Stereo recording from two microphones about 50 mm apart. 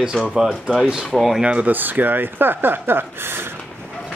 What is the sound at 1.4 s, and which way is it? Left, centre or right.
Speech, right.